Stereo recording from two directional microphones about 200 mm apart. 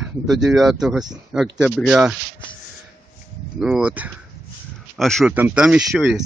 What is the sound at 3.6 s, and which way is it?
Speech, 5° right (ahead or behind).